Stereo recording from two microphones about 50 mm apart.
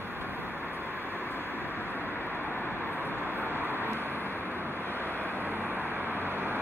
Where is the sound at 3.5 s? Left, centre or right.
Right.